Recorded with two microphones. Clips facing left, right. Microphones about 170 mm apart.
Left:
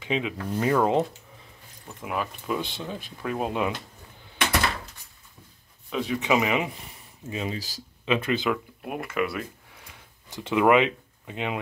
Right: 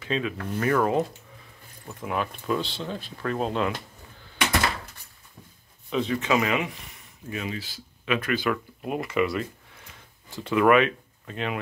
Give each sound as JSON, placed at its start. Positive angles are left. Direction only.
{"t": 0.0, "sound": "speech", "side_deg": 20}
{"t": 2.0, "sound": "speech", "side_deg": 5}
{"t": 5.9, "sound": "speech", "side_deg": 5}
{"t": 6.6, "sound": "speech", "side_deg": 25}
{"t": 7.5, "sound": "speech", "side_deg": 40}
{"t": 8.0, "sound": "speech", "side_deg": 25}
{"t": 8.8, "sound": "speech", "side_deg": 5}
{"t": 10.3, "sound": "speech", "side_deg": 20}